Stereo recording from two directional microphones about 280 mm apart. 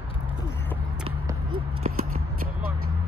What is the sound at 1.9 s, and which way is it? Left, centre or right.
Shuffling cards, right.